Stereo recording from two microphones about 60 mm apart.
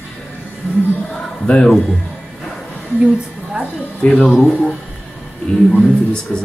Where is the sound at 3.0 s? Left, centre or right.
Centre.